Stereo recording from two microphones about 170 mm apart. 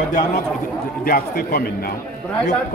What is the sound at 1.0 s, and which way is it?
Speech, 65° left (ahead or behind).